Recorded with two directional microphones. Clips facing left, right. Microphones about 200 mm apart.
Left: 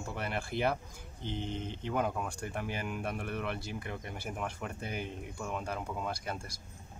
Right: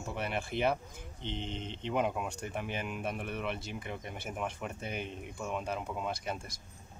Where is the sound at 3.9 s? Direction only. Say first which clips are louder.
Even; 5° right (ahead or behind).